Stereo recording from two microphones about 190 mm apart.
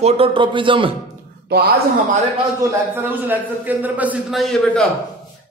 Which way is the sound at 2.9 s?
10° right (ahead or behind).